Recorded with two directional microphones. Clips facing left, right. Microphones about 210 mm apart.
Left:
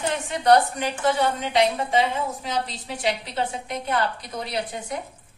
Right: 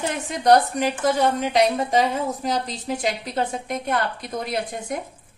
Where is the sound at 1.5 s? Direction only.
40° right (ahead or behind).